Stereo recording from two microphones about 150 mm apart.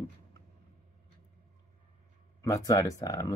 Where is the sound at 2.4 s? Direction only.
20° left (ahead or behind).